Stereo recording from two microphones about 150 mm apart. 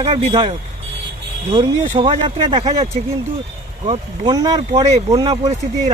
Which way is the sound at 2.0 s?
40° right (ahead or behind).